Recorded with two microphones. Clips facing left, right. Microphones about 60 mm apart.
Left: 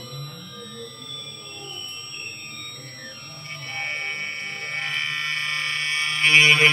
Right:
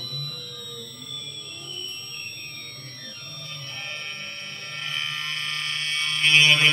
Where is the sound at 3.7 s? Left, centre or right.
Left.